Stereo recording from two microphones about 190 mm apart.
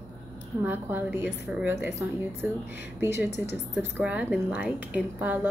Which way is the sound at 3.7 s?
5° right (ahead or behind).